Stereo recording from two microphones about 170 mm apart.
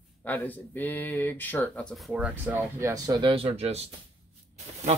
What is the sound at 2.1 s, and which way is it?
Speech, 10° right (ahead or behind).